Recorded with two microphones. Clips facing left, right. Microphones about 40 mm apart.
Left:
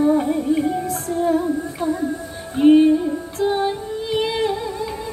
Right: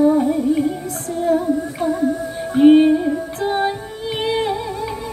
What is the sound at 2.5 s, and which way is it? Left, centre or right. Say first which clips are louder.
Music: right 2 dB; right.